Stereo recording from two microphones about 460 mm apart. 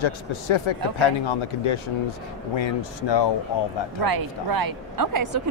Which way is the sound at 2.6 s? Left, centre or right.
Left.